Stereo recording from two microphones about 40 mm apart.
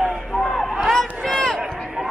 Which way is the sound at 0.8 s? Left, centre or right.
Centre.